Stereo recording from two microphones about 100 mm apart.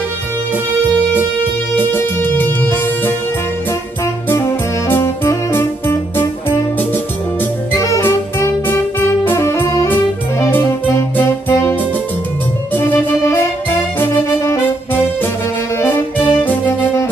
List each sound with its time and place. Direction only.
1.8 s music: 20° left (ahead or behind)
7.7 s music: 35° left (ahead or behind)
8.0 s music: 20° left (ahead or behind)
11.1 s music: 20° left (ahead or behind)
15.8 s music: 25° left (ahead or behind)